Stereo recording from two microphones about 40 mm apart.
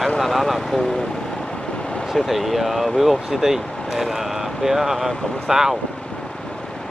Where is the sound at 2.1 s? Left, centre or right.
Centre.